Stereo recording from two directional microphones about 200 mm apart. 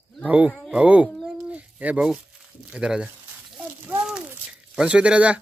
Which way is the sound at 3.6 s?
5° right (ahead or behind).